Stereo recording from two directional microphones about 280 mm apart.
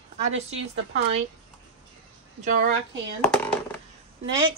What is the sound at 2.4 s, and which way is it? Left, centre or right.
Speech, right.